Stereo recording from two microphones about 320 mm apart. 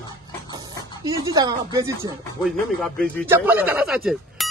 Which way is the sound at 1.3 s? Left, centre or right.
Centre.